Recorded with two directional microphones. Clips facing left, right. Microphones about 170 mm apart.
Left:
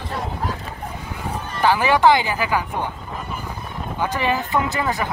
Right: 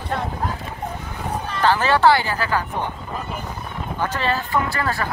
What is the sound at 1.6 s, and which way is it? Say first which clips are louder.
Speech: left 1 dB; 15° left (ahead or behind).